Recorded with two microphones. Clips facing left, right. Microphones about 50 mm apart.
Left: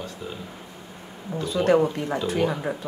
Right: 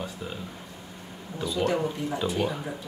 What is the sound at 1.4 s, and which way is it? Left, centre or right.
Speech, left.